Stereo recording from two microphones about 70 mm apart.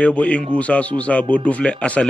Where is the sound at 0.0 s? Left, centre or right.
Centre.